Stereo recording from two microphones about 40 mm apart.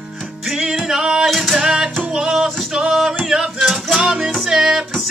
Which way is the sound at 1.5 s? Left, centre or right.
Centre.